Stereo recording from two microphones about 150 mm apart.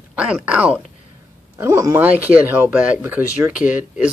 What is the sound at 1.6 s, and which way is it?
Speech, 20° right (ahead or behind).